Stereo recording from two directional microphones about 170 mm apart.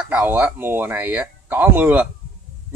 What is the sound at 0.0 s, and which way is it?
Speech, 10° right (ahead or behind).